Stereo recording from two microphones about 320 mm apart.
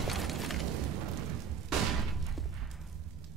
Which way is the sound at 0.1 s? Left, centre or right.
Centre.